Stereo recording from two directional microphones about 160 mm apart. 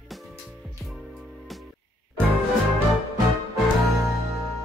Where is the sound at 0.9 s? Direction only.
Centre (ahead or behind).